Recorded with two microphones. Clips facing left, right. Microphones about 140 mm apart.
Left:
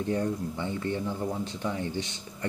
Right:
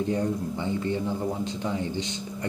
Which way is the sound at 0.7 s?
20° right (ahead or behind).